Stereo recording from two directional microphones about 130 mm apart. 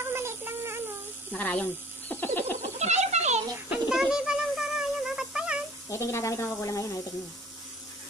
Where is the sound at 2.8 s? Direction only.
60° right (ahead or behind).